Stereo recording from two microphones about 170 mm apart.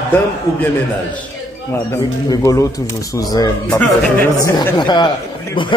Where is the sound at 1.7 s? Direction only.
15° left (ahead or behind).